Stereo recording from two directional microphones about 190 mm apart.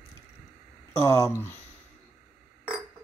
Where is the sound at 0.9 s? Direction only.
15° left (ahead or behind).